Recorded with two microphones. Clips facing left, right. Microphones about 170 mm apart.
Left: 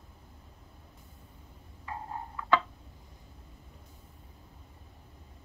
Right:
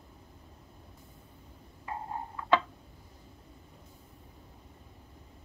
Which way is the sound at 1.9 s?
25° right (ahead or behind).